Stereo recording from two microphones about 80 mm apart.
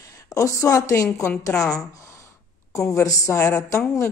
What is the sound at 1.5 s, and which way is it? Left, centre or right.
Speech, centre.